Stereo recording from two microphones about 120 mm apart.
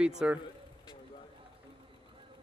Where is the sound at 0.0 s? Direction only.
5° right (ahead or behind).